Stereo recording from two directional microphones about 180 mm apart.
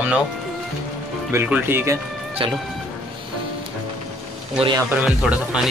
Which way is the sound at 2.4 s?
30° right (ahead or behind).